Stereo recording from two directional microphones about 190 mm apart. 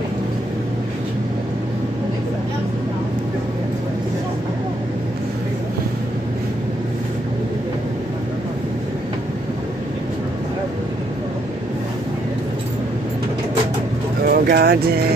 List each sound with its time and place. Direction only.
14.2 s speech: 55° right (ahead or behind)